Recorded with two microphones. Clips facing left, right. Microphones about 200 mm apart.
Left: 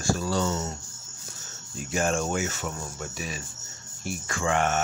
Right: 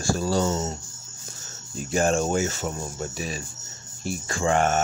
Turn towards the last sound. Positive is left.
turn(degrees=-35)  # may be behind; listen again after turning